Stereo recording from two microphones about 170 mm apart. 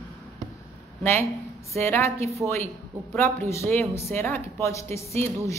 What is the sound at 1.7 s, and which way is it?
Speech, 15° left (ahead or behind).